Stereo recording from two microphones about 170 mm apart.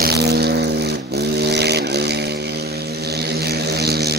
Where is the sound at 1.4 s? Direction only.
75° right (ahead or behind).